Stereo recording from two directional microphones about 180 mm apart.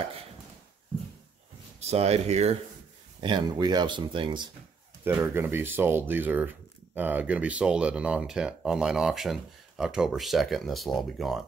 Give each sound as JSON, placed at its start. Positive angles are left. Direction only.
{"t": 1.8, "sound": "speech", "side_deg": -35}
{"t": 3.2, "sound": "speech", "side_deg": -25}
{"t": 5.0, "sound": "speech", "side_deg": -10}